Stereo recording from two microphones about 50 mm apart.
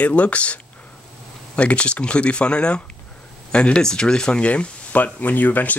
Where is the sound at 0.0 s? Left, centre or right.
Left.